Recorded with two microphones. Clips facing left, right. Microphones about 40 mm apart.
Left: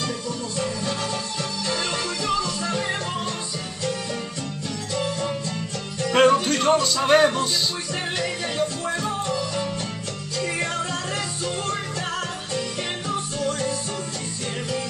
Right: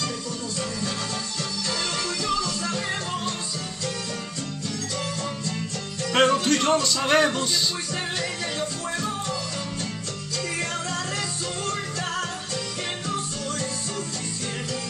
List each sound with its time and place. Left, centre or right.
2.2 s music: centre
4.9 s music: centre
13.1 s music: centre